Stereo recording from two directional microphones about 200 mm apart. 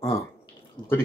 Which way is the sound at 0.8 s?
20° left (ahead or behind).